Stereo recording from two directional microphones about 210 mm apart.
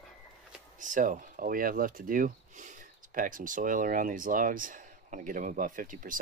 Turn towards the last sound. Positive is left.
turn(degrees=-40)  # may be behind; listen again after turning